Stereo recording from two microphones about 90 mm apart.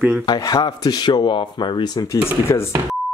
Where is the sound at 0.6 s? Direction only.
50° left (ahead or behind).